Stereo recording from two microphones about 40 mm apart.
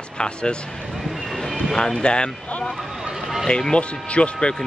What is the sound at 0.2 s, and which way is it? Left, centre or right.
Speech, left.